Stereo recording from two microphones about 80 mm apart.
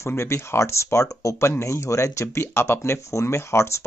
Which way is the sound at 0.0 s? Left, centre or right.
Left.